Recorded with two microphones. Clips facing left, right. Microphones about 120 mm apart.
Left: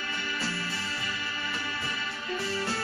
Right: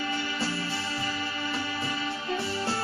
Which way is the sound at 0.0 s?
30° right (ahead or behind).